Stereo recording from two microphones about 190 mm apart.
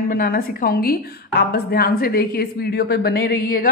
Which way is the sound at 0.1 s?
50° left (ahead or behind).